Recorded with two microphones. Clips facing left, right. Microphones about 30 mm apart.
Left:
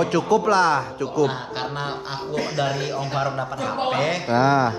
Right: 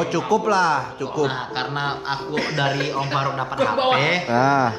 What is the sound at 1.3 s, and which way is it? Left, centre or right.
Speech, centre.